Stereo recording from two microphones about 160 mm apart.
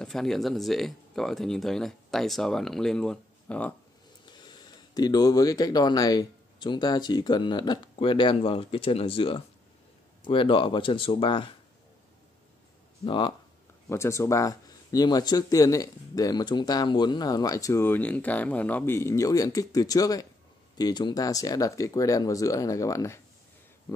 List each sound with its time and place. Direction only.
0.0 s speech: centre (ahead or behind)
4.3 s speech: 25° left (ahead or behind)
13.0 s speech: 30° left (ahead or behind)
13.8 s speech: 15° left (ahead or behind)